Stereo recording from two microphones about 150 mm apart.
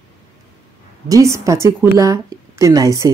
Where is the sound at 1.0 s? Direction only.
20° right (ahead or behind).